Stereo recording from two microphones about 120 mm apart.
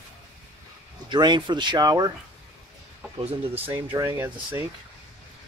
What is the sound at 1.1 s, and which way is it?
Speech, 40° right (ahead or behind).